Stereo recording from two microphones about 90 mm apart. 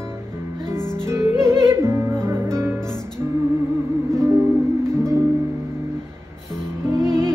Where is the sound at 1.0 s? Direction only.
35° right (ahead or behind).